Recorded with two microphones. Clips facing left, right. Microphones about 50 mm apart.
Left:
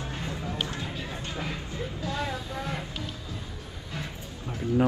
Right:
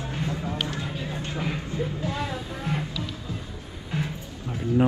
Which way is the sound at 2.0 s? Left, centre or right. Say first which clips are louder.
Right 2 dB; right.